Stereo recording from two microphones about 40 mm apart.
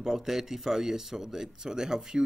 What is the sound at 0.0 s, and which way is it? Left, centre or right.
Speech, centre.